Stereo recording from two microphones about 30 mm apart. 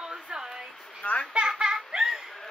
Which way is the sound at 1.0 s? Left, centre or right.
Left.